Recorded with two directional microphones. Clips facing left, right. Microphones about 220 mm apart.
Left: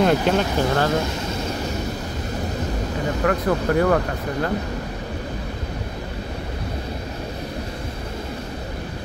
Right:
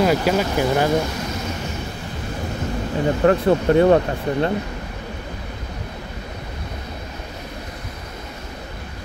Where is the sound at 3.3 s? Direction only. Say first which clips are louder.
Right 5 dB; 25° right (ahead or behind).